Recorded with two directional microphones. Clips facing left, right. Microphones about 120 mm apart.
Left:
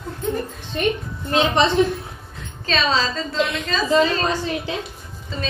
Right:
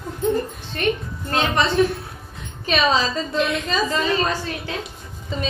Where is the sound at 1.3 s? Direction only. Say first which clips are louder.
Left 3 dB; 20° left (ahead or behind).